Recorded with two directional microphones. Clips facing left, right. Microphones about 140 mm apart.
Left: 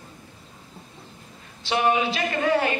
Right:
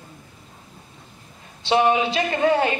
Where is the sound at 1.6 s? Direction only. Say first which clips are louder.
Right 4 dB; 25° right (ahead or behind).